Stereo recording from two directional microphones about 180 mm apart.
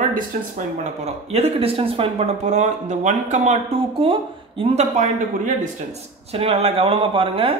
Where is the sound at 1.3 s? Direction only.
35° right (ahead or behind).